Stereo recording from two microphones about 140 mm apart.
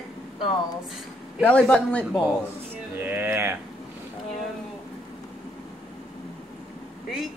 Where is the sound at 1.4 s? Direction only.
10° left (ahead or behind).